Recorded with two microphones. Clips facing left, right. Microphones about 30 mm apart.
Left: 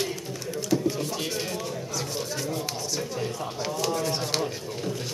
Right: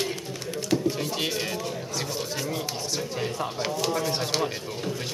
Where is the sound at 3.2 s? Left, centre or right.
Right.